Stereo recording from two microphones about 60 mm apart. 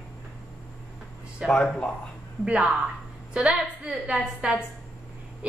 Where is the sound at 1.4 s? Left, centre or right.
Centre.